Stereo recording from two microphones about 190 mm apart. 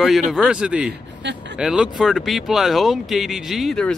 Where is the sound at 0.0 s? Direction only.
Centre (ahead or behind).